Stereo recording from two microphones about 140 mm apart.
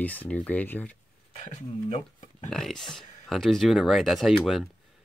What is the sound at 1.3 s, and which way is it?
Speech, 55° left (ahead or behind).